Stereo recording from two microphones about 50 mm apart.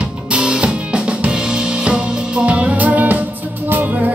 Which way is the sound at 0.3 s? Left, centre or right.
Right.